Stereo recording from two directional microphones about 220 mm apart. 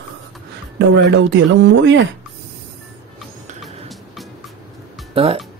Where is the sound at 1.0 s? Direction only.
55° right (ahead or behind).